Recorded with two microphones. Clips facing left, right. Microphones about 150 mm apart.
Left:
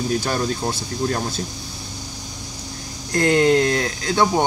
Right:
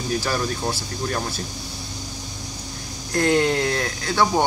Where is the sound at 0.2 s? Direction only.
20° left (ahead or behind).